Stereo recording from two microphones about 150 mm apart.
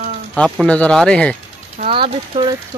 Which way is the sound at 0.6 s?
5° left (ahead or behind).